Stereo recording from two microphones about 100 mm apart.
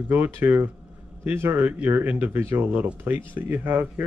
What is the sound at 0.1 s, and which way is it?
Speech, 20° right (ahead or behind).